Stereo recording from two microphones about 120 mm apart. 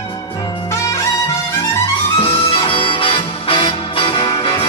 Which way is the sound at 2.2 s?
50° left (ahead or behind).